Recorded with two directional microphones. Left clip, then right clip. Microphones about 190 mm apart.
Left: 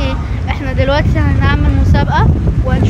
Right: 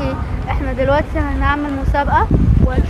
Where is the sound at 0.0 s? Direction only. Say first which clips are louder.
Left 2 dB; 20° left (ahead or behind).